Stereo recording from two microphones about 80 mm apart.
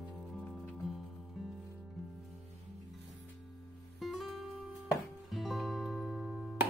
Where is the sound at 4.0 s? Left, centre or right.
Centre.